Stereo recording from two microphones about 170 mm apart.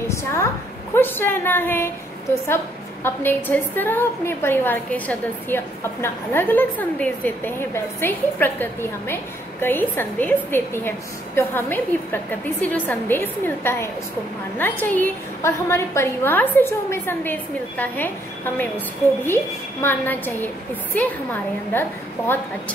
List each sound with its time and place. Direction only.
0.1 s a woman's voice: 15° left (ahead or behind)